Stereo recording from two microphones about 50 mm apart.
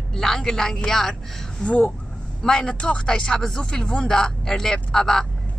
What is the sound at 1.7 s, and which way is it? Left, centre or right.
A woman's voice, left.